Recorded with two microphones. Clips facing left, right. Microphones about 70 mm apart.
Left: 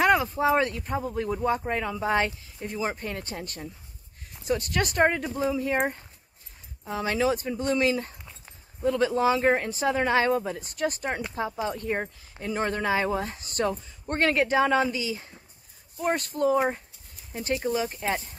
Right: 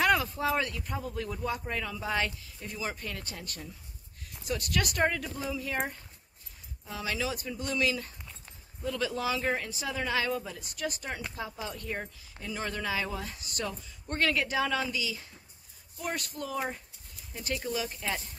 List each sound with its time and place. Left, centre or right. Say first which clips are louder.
0.0 s speech: left 5 dB; left
6.8 s speech: left 8 dB; left